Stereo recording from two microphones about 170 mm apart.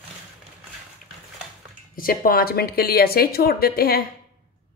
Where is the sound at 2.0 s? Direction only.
60° left (ahead or behind).